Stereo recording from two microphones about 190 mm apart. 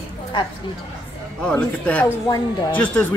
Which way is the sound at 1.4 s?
5° left (ahead or behind).